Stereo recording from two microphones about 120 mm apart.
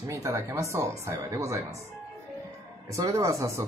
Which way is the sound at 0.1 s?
25° right (ahead or behind).